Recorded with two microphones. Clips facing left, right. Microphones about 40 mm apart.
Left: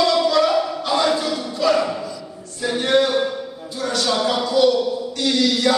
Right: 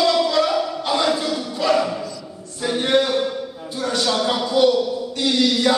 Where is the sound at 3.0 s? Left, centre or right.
Centre.